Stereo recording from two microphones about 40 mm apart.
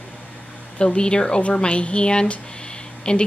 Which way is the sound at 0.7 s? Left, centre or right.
Left.